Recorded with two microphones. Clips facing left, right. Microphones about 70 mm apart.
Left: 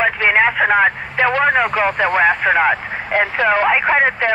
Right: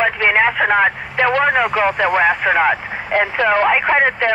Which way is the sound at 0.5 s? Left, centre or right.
Centre.